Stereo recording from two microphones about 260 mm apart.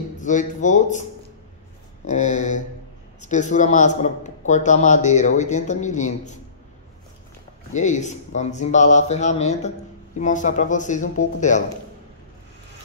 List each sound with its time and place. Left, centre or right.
0.2 s a man's voice: left
2.0 s a man's voice: left
7.7 s a man's voice: left